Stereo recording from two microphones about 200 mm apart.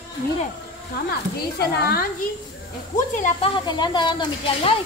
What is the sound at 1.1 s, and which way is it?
Speech, 50° left (ahead or behind).